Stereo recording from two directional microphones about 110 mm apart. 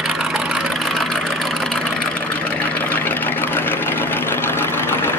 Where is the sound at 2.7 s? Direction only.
15° left (ahead or behind).